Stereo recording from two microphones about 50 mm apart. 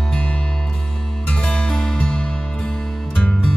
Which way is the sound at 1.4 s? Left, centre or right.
Centre.